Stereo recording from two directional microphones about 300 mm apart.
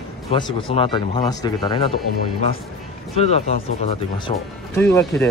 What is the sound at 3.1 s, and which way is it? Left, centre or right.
Speech, left.